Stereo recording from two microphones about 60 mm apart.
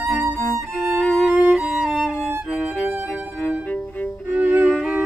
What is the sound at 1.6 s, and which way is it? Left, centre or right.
Music, centre.